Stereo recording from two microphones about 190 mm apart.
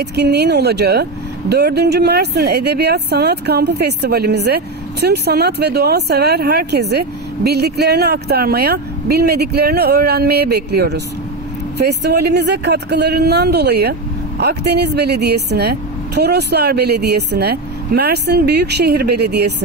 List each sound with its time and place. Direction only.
0.0 s speech: 60° right (ahead or behind)